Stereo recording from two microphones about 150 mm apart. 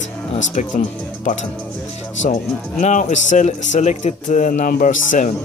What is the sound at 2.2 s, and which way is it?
Music, 55° left (ahead or behind).